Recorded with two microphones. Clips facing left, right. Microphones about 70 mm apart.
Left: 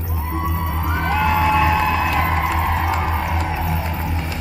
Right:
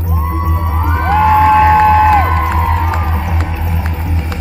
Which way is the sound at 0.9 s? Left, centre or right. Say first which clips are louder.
Right 9 dB; right.